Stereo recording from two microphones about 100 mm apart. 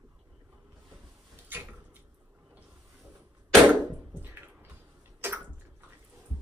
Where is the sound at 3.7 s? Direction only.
20° right (ahead or behind).